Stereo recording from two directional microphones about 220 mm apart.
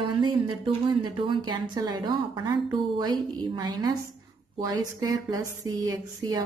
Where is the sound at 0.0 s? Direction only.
20° right (ahead or behind).